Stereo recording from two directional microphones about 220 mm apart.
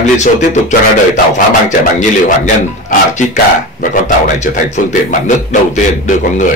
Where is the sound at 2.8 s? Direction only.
35° left (ahead or behind).